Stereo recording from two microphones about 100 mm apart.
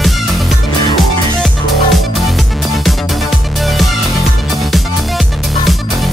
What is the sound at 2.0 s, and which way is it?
Music, centre (ahead or behind).